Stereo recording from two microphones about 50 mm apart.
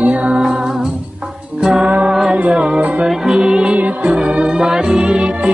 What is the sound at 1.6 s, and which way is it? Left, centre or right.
Music, centre.